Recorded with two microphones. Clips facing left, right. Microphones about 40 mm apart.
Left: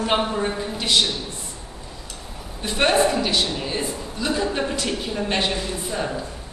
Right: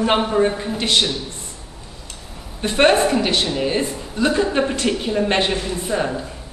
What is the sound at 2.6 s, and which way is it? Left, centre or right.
A man's voice, right.